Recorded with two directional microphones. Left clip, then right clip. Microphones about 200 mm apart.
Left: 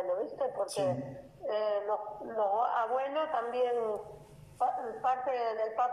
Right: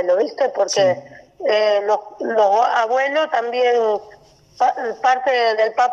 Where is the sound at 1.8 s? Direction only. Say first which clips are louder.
Right 15 dB; 85° right.